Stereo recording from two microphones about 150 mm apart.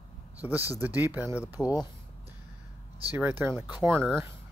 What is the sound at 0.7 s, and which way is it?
Speech, 15° right (ahead or behind).